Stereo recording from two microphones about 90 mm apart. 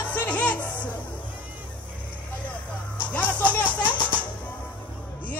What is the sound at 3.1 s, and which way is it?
Music, 15° left (ahead or behind).